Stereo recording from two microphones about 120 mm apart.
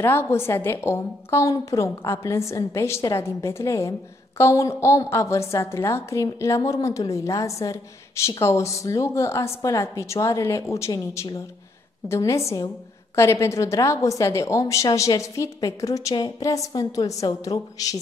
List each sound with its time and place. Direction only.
0.0 s a woman's voice: 20° left (ahead or behind)